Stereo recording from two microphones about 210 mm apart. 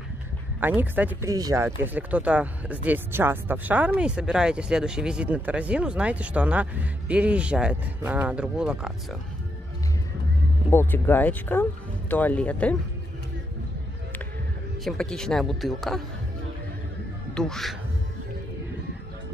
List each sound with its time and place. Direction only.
0.6 s speech: 10° right (ahead or behind)
10.7 s speech: 10° left (ahead or behind)
14.9 s speech: 5° left (ahead or behind)
17.3 s speech: 5° left (ahead or behind)